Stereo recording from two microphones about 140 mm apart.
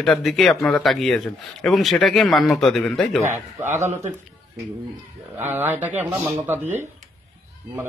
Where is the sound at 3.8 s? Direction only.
55° right (ahead or behind).